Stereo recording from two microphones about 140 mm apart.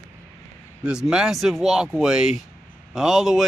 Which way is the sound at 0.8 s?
5° right (ahead or behind).